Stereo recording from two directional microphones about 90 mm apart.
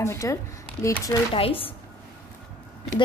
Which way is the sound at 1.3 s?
90° left.